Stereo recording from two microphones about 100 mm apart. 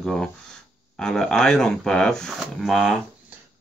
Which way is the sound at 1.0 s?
5° left (ahead or behind).